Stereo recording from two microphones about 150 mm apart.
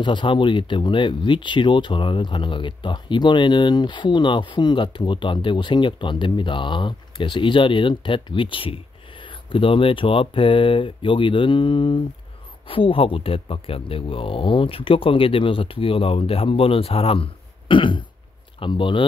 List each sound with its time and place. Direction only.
0.0 s speech: 30° left (ahead or behind)